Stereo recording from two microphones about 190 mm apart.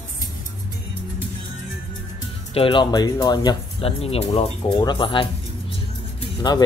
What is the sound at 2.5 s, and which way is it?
Speech, 25° left (ahead or behind).